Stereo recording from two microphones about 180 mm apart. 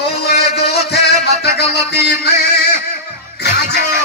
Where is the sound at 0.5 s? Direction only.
65° left (ahead or behind).